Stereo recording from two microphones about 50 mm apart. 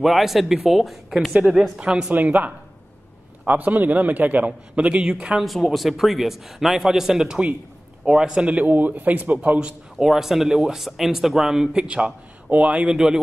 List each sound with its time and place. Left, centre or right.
0.0 s a man's voice: centre
2.1 s a man's voice: right
5.4 s a man's voice: centre; by 10.0 s right
10.0 s a man's voice: centre